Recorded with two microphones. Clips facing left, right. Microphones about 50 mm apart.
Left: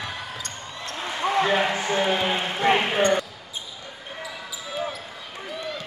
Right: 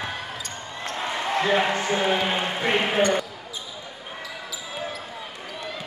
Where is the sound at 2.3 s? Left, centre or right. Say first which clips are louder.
Right 1 dB; centre.